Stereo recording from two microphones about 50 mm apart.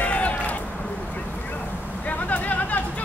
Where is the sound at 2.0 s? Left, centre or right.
Left.